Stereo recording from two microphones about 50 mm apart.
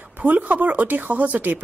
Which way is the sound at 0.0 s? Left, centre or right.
Right.